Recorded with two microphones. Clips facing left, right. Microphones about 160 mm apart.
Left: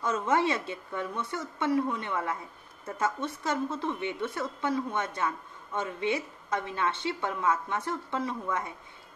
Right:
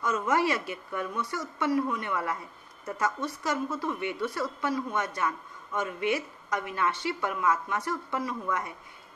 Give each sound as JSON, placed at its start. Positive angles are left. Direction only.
{"t": 0.0, "sound": "a woman's voice", "side_deg": 25}